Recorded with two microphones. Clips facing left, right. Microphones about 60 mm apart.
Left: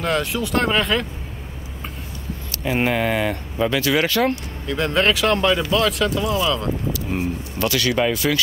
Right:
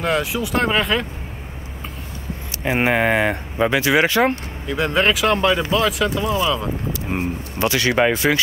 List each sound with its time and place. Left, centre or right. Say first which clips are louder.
0.0 s speech: right 1 dB; centre
2.6 s speech: right 2 dB; right
4.6 s speech: right 1 dB; centre
6.9 s speech: even; right